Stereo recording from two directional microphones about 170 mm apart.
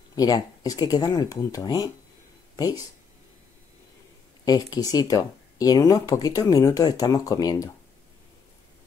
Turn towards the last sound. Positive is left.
turn(degrees=20)  # may be behind; listen again after turning